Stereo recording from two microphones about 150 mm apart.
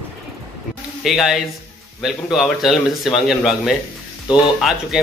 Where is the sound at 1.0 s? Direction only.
Centre (ahead or behind).